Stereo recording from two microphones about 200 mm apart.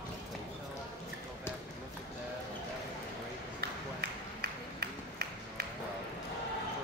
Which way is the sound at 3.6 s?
55° right (ahead or behind).